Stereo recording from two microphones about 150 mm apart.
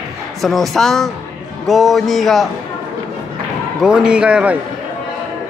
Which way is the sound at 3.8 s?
5° right (ahead or behind).